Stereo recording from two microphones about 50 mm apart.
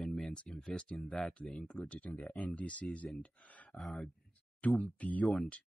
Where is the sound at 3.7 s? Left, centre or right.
Centre.